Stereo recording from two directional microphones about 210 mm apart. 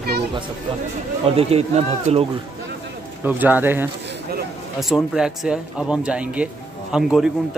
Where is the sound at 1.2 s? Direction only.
30° right (ahead or behind).